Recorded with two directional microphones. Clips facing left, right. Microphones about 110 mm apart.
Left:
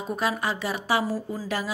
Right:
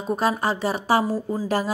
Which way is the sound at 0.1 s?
35° right (ahead or behind).